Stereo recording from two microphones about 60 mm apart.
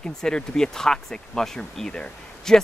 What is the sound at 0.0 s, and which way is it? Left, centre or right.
Speech, centre.